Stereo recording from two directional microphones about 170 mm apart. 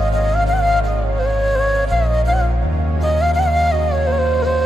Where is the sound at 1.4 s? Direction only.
Centre (ahead or behind).